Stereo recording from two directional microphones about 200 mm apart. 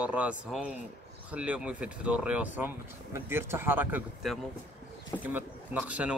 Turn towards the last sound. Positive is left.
turn(degrees=-5)  # may be behind; listen again after turning